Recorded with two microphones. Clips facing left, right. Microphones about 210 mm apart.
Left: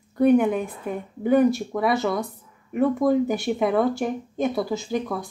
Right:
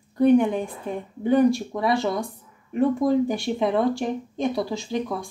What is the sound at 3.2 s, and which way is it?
Speech, 5° left (ahead or behind).